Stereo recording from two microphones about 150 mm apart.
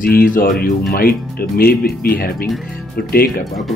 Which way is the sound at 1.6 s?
90° left.